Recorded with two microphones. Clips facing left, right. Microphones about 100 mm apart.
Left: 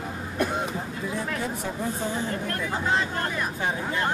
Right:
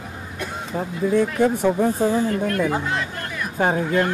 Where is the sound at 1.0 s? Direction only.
65° right (ahead or behind).